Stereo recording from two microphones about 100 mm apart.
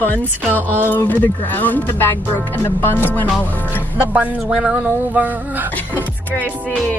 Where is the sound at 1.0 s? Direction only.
15° left (ahead or behind).